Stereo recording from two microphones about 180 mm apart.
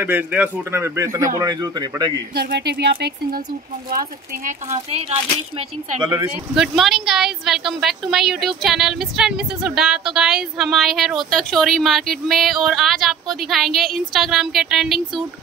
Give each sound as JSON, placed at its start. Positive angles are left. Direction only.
{"t": 0.0, "sound": "speech", "side_deg": -10}
{"t": 2.3, "sound": "speech", "side_deg": -65}
{"t": 4.5, "sound": "speech", "side_deg": -40}
{"t": 6.5, "sound": "a woman's voice", "side_deg": 0}